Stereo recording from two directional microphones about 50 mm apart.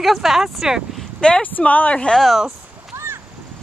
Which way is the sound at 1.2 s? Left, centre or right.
Centre.